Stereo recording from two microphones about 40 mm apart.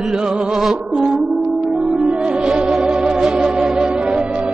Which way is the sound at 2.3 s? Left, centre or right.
Centre.